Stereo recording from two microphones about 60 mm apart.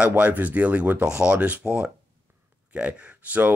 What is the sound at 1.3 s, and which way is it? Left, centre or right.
Speech, right.